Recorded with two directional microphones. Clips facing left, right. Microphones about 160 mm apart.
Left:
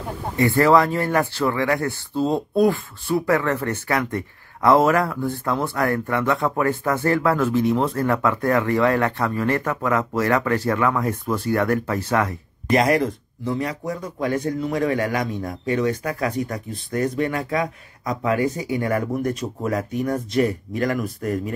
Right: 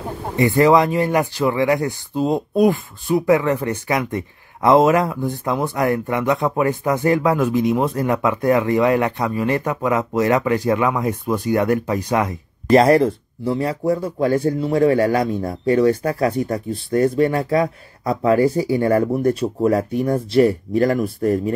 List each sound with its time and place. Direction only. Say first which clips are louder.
0.4 s speech: right 2 dB; 15° right (ahead or behind)
12.6 s a man's voice: right 6 dB; 30° right (ahead or behind)